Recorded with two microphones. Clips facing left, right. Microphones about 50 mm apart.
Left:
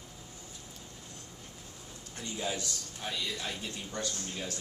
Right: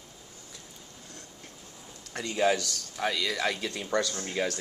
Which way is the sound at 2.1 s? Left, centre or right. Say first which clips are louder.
Right 10 dB; right.